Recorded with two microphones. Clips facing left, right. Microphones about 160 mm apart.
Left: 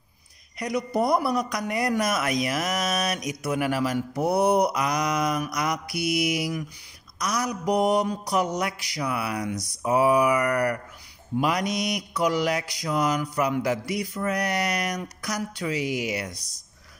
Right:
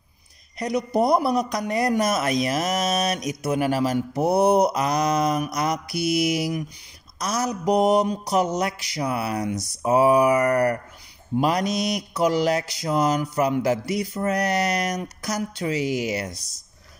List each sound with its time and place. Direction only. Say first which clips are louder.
0.6 s mantra: right 3 dB; 25° right (ahead or behind)